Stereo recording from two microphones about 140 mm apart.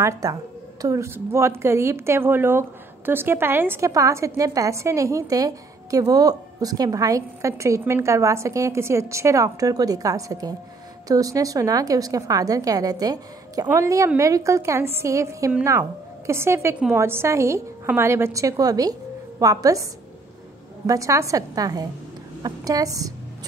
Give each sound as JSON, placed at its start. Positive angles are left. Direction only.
{"t": 0.0, "sound": "a woman's voice", "side_deg": -25}